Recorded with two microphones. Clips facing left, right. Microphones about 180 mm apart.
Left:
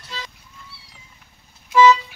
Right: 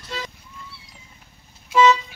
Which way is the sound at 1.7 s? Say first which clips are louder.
Left 2 dB; 25° right (ahead or behind).